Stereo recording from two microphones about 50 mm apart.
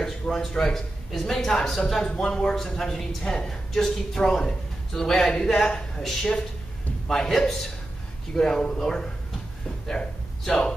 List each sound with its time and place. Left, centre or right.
0.0 s speech: centre